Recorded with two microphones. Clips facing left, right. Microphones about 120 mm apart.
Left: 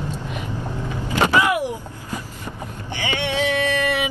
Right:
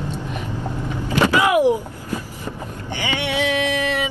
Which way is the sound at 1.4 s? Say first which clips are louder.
Right 4 dB; 15° right (ahead or behind).